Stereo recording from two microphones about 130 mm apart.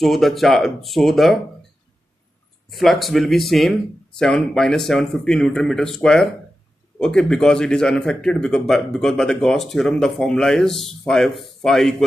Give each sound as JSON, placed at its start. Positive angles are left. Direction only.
{"t": 0.0, "sound": "speech", "side_deg": 0}
{"t": 2.7, "sound": "speech", "side_deg": 0}